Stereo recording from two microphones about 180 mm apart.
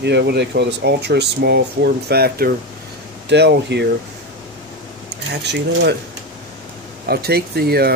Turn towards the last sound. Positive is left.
turn(degrees=-60)  # may be behind; listen again after turning